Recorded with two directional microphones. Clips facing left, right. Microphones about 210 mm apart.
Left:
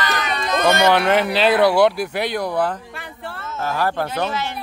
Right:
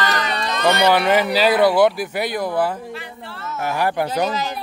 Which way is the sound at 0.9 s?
5° right (ahead or behind).